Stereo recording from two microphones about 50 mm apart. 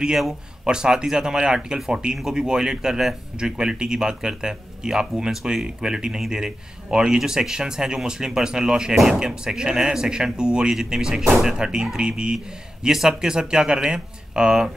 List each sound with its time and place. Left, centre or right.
0.7 s speech: centre
8.9 s speech: centre
9.2 s speech: centre
12.8 s speech: centre